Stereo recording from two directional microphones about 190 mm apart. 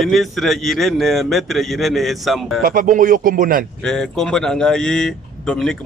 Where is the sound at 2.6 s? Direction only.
45° right (ahead or behind).